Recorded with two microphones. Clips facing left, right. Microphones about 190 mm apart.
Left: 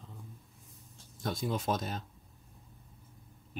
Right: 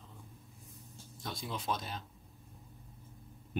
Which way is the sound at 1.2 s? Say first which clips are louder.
Left 7 dB; 50° left (ahead or behind).